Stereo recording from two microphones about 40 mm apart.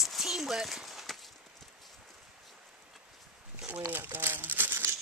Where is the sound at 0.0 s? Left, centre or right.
Centre.